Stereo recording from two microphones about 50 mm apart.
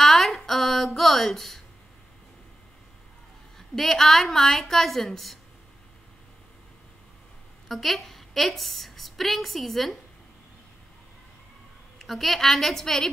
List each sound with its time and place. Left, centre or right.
0.0 s a sound: centre
3.5 s a woman's voice: centre
7.6 s a woman's voice: centre
12.0 s a woman's voice: centre